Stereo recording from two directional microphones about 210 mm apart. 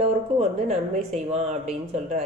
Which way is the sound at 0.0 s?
30° right (ahead or behind).